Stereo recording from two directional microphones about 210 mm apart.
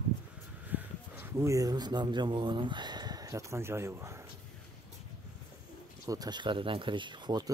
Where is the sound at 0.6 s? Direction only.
10° right (ahead or behind).